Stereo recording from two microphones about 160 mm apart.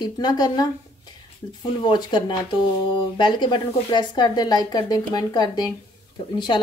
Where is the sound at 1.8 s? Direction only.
30° left (ahead or behind).